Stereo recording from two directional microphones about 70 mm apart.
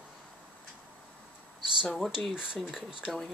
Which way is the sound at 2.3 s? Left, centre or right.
Centre.